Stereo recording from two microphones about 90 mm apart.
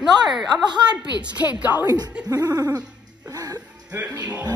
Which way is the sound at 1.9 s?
45° right (ahead or behind).